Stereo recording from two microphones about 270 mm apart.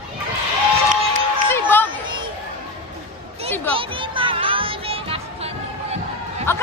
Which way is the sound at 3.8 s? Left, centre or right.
Centre.